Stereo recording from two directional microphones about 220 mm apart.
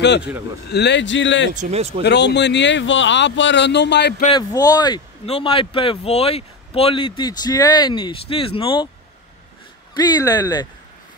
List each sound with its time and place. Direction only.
0.0 s speech: 50° left (ahead or behind)
1.5 s speech: 30° right (ahead or behind)
2.0 s speech: 50° left (ahead or behind)
4.3 s speech: 20° left (ahead or behind)
9.9 s speech: 20° left (ahead or behind)